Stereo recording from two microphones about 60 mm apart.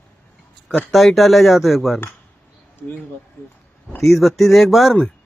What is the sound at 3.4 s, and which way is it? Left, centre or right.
Speech, left.